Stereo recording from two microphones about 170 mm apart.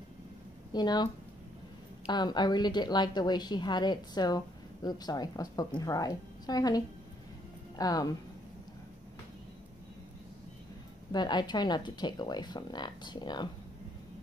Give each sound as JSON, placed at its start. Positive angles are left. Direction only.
{"t": 0.7, "sound": "speech", "side_deg": 25}
{"t": 11.1, "sound": "speech", "side_deg": 25}